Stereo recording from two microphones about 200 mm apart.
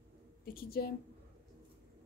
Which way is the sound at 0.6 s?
50° left (ahead or behind).